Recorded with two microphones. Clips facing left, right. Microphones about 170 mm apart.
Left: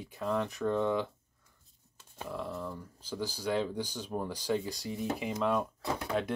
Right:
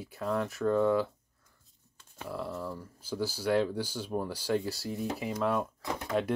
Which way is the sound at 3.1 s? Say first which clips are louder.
Right 3 dB; 15° left (ahead or behind).